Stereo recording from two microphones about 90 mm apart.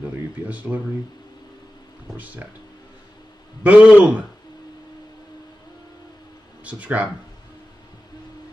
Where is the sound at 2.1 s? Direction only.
20° right (ahead or behind).